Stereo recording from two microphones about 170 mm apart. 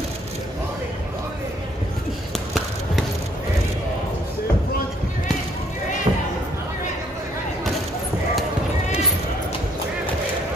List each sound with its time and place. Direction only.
6.1 s basketball bounce: 35° right (ahead or behind)